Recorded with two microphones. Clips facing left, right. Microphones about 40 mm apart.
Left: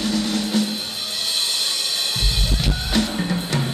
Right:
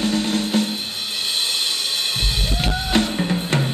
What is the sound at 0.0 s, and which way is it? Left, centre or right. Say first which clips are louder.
Music: right 2 dB; right.